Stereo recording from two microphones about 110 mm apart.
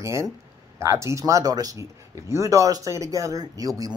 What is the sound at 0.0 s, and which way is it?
Speech, 25° right (ahead or behind).